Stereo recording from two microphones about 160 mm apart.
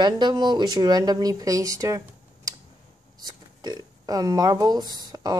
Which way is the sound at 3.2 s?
25° right (ahead or behind).